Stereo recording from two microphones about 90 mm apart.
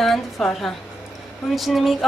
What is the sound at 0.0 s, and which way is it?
A woman's voice, centre (ahead or behind).